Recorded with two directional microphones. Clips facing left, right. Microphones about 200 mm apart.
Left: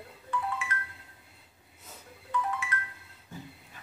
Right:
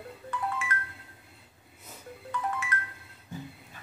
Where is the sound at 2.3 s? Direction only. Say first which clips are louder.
Left 1 dB; 45° right (ahead or behind).